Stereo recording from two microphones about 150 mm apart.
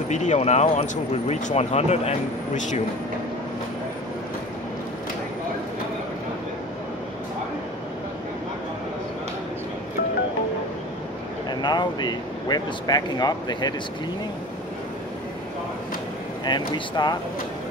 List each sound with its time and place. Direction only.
0.1 s speech: 50° left (ahead or behind)
11.6 s speech: 30° left (ahead or behind)
16.4 s speech: 30° left (ahead or behind)